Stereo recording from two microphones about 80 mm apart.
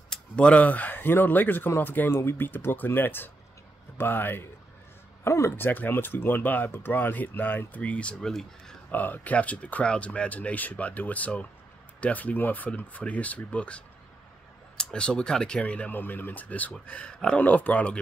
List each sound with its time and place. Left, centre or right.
0.1 s speech: centre; by 5.7 s left
5.7 s speech: left; by 8.7 s centre
8.9 s speech: left